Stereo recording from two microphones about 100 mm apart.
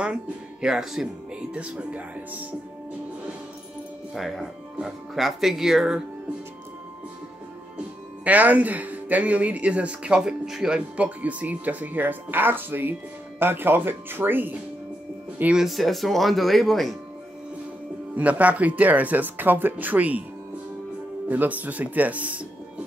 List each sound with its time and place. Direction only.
0.0 s speech: 10° right (ahead or behind)
4.1 s speech: centre (ahead or behind)
8.2 s speech: 15° right (ahead or behind)
15.6 s speech: centre (ahead or behind)
18.1 s speech: 15° right (ahead or behind)
21.3 s speech: 15° right (ahead or behind)